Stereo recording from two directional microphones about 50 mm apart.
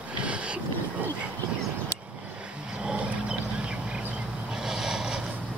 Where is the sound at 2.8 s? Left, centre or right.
Centre.